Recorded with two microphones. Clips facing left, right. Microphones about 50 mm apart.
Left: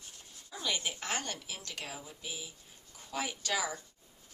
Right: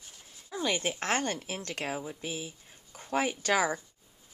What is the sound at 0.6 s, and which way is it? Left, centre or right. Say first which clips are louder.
A woman's voice: right 6 dB; right.